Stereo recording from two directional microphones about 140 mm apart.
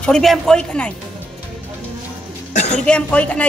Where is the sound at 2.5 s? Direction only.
55° left (ahead or behind).